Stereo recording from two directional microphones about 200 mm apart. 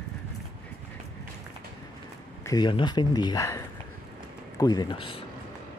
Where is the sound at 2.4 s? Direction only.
20° left (ahead or behind).